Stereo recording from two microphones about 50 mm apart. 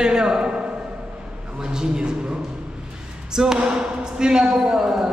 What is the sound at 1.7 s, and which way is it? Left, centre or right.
Speech, centre.